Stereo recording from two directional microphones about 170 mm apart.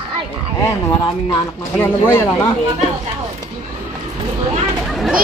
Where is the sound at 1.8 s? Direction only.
15° left (ahead or behind).